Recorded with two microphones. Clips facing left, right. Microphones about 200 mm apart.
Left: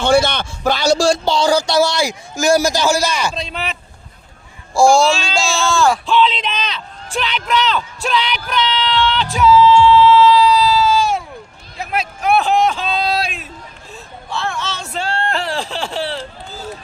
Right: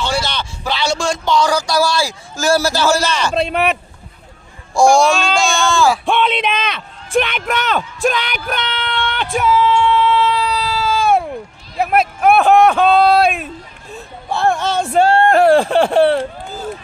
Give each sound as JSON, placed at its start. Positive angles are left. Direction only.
{"t": 0.0, "sound": "speech", "side_deg": 55}
{"t": 3.3, "sound": "speech", "side_deg": -60}
{"t": 4.7, "sound": "speech", "side_deg": 5}
{"t": 6.0, "sound": "a sound", "side_deg": -55}